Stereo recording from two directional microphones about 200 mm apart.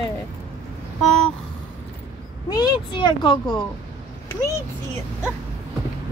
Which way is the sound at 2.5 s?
25° left (ahead or behind).